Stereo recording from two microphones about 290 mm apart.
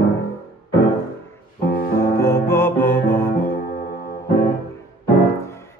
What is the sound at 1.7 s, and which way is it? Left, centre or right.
Music, left.